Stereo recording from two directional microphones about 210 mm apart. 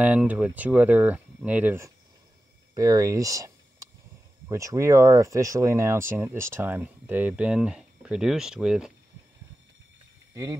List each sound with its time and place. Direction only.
0.0 s speech: 5° right (ahead or behind)
2.7 s a sound: 15° right (ahead or behind)
4.5 s speech: 15° right (ahead or behind)
10.3 s speech: 15° right (ahead or behind)